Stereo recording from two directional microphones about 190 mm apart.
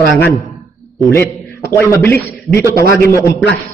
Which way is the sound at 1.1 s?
10° left (ahead or behind).